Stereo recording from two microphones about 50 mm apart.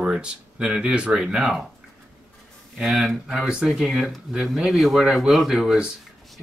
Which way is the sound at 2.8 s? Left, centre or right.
Centre.